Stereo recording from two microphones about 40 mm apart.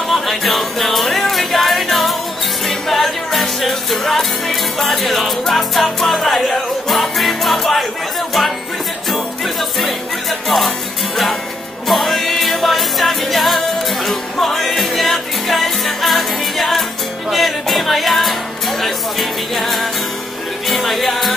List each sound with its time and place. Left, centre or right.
0.1 s music: centre
9.1 s music: centre
11.9 s music: centre